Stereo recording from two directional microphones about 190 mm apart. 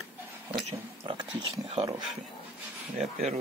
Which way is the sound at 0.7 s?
25° right (ahead or behind).